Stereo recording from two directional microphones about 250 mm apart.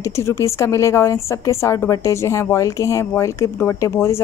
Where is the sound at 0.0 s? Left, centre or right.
Centre.